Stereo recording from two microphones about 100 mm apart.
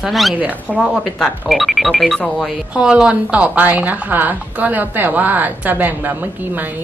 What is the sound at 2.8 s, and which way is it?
Speech, 10° right (ahead or behind).